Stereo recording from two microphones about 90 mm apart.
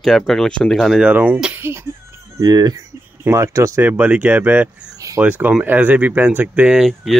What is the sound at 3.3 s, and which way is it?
Speech, 30° right (ahead or behind).